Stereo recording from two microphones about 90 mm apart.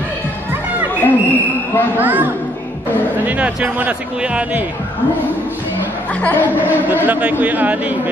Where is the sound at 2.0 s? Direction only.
20° right (ahead or behind).